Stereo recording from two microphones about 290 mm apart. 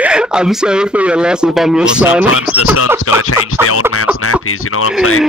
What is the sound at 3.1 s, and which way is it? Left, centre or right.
Speech, left.